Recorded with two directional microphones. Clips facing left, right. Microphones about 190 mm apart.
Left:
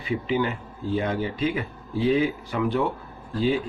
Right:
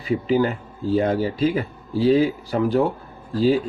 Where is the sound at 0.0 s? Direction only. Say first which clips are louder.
Right 5 dB; 40° right (ahead or behind).